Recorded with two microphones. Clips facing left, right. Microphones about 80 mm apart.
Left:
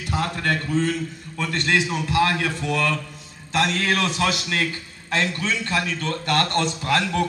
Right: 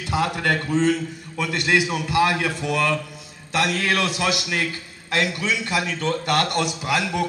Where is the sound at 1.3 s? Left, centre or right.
Centre.